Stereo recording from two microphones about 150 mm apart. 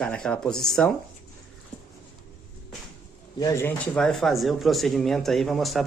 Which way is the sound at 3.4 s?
15° left (ahead or behind).